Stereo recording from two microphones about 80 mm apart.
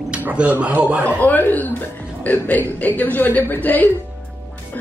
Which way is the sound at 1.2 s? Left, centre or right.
Left.